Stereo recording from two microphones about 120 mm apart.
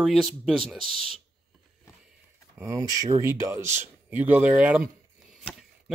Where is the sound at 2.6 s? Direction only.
25° right (ahead or behind); by 4.9 s 10° right (ahead or behind).